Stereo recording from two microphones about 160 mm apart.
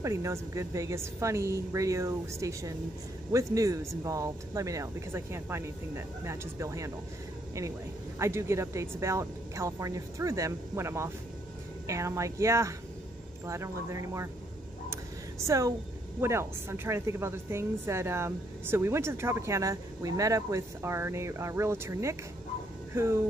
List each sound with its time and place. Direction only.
0.0 s speech: 20° right (ahead or behind)
8.2 s speech: 15° right (ahead or behind)
15.4 s speech: 20° right (ahead or behind)